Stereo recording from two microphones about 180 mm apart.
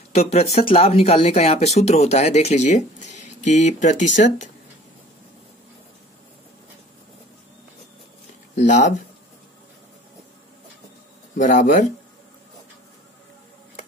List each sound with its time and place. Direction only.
0.1 s speech: 35° left (ahead or behind)
8.5 s speech: 40° left (ahead or behind)
11.3 s speech: 45° left (ahead or behind)